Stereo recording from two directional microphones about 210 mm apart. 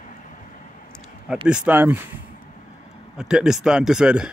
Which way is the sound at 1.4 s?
5° right (ahead or behind).